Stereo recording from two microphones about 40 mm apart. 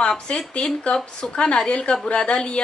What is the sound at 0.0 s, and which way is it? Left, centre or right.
A woman's voice, left.